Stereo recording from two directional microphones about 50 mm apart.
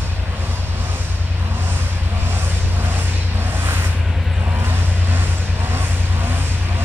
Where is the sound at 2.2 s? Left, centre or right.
Right.